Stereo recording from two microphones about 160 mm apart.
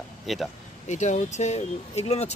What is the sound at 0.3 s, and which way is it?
Speech, centre (ahead or behind).